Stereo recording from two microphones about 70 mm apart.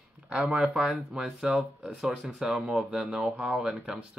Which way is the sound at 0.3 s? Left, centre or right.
Centre.